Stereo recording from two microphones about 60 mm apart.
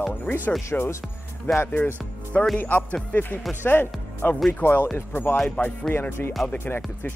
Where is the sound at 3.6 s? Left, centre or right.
Left.